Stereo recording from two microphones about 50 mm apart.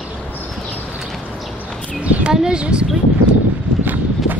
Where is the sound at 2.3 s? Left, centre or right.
Centre.